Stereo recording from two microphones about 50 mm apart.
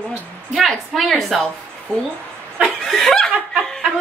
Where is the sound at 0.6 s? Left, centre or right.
Centre.